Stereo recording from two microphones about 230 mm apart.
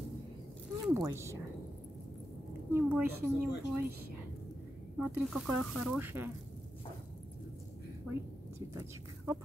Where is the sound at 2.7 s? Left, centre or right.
Centre.